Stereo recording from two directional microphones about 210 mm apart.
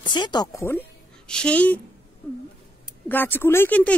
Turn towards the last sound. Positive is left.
turn(degrees=5)  # may be behind; listen again after turning